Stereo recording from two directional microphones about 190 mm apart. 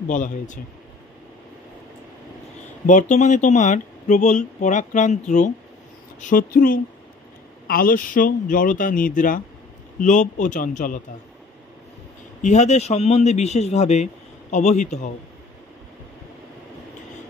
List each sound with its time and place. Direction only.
0.1 s speech: 40° left (ahead or behind)
2.9 s speech: 40° left (ahead or behind)
12.4 s speech: 35° left (ahead or behind)